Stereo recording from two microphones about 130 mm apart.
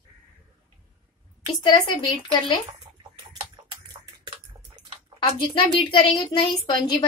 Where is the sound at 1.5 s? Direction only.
35° left (ahead or behind).